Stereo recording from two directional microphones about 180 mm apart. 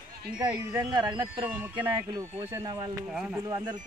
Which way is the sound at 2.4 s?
25° right (ahead or behind).